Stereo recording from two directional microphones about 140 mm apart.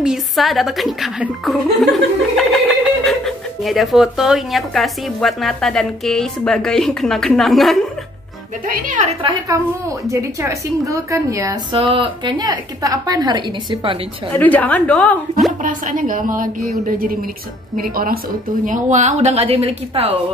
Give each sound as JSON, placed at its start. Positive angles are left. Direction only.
{"t": 0.0, "sound": "speech", "side_deg": 0}
{"t": 8.6, "sound": "a woman's voice", "side_deg": -65}
{"t": 9.5, "sound": "a woman's voice", "side_deg": -25}
{"t": 11.7, "sound": "a woman's voice", "side_deg": -40}
{"t": 14.3, "sound": "a woman's voice", "side_deg": 10}
{"t": 15.6, "sound": "a woman's voice", "side_deg": -70}
{"t": 16.8, "sound": "a woman's voice", "side_deg": -90}
{"t": 18.7, "sound": "a woman's voice", "side_deg": -60}